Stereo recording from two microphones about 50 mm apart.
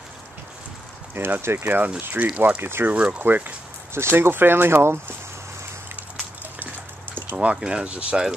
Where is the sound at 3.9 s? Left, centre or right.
Right.